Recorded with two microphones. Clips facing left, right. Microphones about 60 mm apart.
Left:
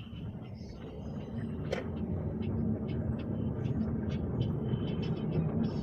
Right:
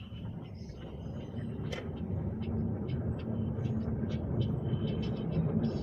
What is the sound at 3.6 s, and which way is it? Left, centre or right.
Vehicle, left.